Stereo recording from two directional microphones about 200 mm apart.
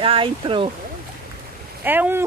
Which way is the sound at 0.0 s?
25° right (ahead or behind).